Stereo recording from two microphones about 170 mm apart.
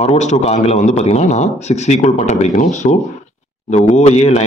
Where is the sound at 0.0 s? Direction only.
40° left (ahead or behind).